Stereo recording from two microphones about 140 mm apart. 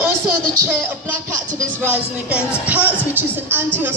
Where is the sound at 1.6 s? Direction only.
10° right (ahead or behind).